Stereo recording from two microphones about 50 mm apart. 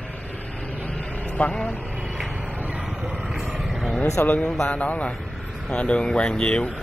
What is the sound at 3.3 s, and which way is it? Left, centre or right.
Vehicle, centre.